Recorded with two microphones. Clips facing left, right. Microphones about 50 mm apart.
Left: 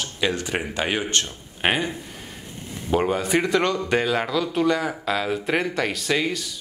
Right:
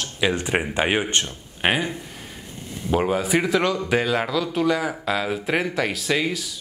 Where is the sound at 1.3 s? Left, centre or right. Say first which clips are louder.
Right 1 dB; centre.